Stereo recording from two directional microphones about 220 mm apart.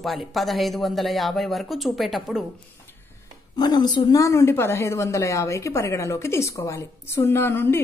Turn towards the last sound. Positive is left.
turn(degrees=10)  # may be behind; listen again after turning